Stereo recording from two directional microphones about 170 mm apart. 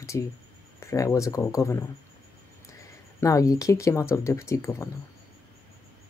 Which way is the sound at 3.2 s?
20° left (ahead or behind).